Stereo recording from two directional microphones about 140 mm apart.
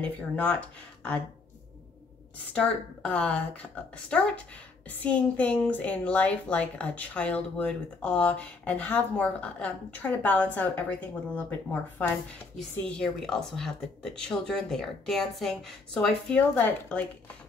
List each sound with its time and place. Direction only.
0.0 s a woman's voice: 10° left (ahead or behind)
2.5 s a woman's voice: 10° left (ahead or behind)
12.7 s a woman's voice: 5° left (ahead or behind)